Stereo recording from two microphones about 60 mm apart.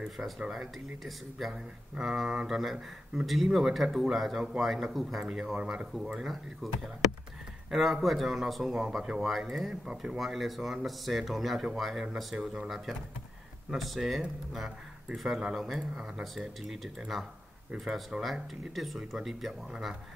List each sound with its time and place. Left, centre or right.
0.5 s speech: centre
15.8 s speech: centre
16.2 s speech: centre